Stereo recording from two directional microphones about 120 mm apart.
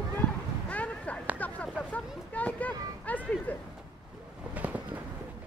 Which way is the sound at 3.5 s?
15° left (ahead or behind).